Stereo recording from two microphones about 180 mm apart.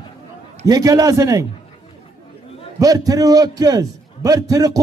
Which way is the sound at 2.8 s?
20° right (ahead or behind).